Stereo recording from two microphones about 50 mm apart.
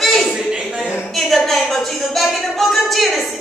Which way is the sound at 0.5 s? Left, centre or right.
Centre.